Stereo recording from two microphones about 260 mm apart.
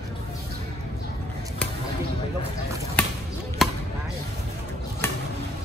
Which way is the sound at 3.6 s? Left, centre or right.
Centre.